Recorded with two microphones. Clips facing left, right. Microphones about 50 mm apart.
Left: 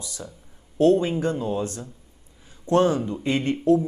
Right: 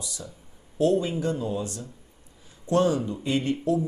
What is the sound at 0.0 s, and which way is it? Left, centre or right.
A man's voice, left.